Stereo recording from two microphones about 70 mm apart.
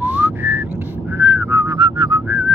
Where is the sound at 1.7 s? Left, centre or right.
Right.